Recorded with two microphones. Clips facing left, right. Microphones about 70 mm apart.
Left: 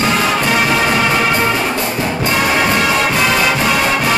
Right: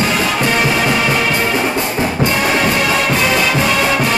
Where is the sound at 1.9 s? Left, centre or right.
Centre.